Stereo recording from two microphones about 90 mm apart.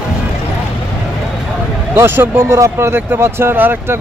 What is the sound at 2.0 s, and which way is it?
Speech, 25° right (ahead or behind).